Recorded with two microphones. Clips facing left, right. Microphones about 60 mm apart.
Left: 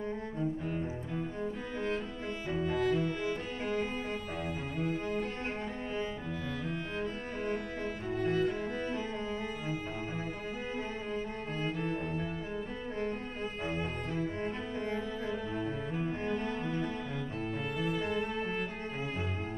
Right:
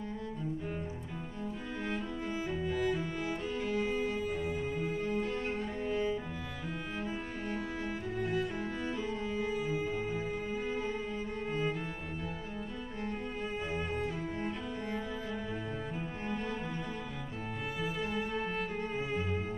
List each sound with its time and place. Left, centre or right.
2.5 s music: centre
4.5 s music: centre
7.8 s music: centre
11.5 s music: centre
13.7 s cello: centre
16.4 s cello: centre
17.7 s music: centre